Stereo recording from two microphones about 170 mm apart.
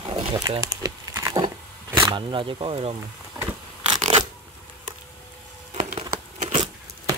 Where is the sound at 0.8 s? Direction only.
20° right (ahead or behind).